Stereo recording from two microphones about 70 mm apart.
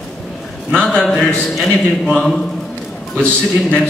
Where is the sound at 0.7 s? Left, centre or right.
Centre.